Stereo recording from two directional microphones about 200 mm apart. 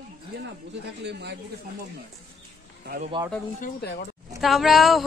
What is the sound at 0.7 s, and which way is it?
Speech, 55° right (ahead or behind).